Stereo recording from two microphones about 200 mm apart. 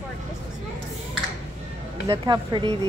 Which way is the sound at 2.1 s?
20° right (ahead or behind).